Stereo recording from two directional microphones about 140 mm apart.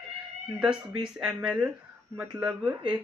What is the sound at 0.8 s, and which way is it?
Speech, 35° right (ahead or behind).